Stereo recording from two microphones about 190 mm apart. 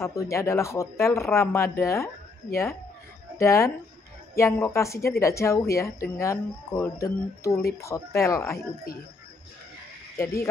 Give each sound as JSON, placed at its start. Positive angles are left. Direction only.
{"t": 0.0, "sound": "speech", "side_deg": 15}
{"t": 3.3, "sound": "speech", "side_deg": 15}
{"t": 10.1, "sound": "speech", "side_deg": 15}